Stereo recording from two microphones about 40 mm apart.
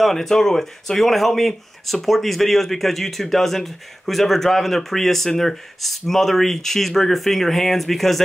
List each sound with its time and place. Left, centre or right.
0.0 s speech: centre